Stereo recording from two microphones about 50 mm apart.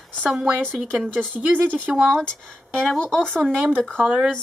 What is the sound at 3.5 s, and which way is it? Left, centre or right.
Speech, right.